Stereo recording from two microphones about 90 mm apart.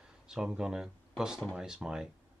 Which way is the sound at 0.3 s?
5° right (ahead or behind).